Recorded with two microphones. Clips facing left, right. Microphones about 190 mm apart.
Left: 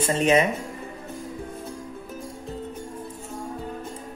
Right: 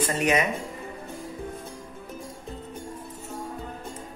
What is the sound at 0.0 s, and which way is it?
Speech, 25° left (ahead or behind).